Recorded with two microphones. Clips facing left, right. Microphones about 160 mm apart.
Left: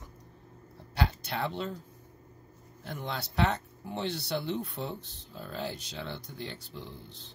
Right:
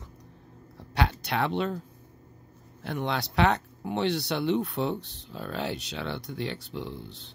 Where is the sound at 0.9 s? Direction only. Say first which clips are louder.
Right 5 dB; 75° right (ahead or behind).